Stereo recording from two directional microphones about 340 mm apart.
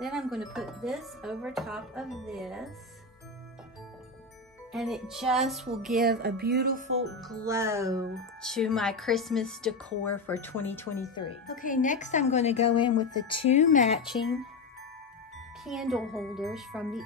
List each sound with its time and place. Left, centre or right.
0.0 s speech: centre
4.7 s speech: centre
6.0 s speech: right
7.2 s speech: centre
8.4 s speech: centre
11.4 s a woman's voice: left
14.0 s speech: centre
15.6 s speech: centre